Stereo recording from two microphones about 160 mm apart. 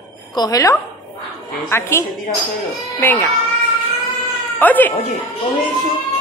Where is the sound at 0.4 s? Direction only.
20° left (ahead or behind).